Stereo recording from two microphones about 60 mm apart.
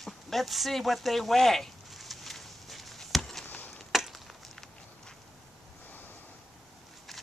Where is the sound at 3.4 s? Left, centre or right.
Left.